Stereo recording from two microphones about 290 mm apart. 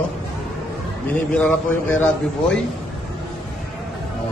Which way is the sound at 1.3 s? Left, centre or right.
Centre.